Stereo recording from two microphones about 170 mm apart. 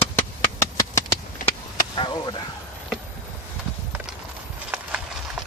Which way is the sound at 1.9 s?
25° left (ahead or behind).